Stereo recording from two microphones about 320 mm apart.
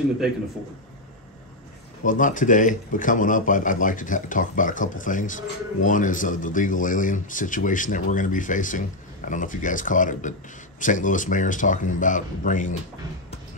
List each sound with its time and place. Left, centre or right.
2.0 s speech: left